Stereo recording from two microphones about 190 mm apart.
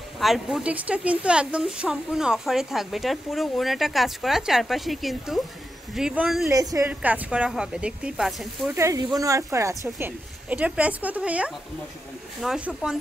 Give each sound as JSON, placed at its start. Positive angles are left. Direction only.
{"t": 0.2, "sound": "a woman's voice", "side_deg": 0}
{"t": 6.5, "sound": "a woman's voice", "side_deg": -20}
{"t": 8.7, "sound": "a woman's voice", "side_deg": -15}